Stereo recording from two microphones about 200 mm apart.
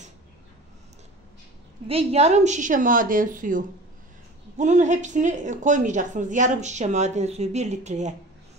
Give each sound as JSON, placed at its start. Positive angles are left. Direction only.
{"t": 1.9, "sound": "a woman's voice", "side_deg": -30}